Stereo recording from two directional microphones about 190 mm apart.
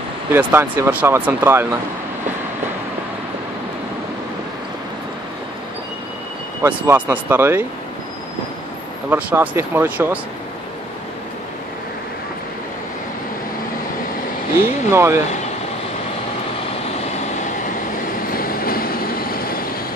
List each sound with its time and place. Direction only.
0.3 s speech: 10° right (ahead or behind)
6.6 s speech: 10° right (ahead or behind)
9.1 s speech: 10° right (ahead or behind)
14.9 s speech: 10° right (ahead or behind)
18.3 s vehicle: 50° left (ahead or behind)